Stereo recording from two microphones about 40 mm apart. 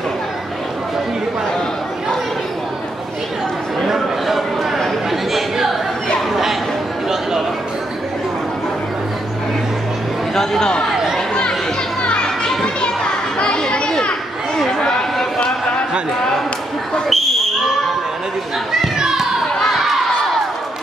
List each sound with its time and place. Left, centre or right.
3.8 s chatter: centre
10.3 s chatter: centre
11.1 s chatter: left
12.0 s children playing: left
14.7 s chatter: centre
17.1 s basketball bounce: centre
19.6 s crowd: centre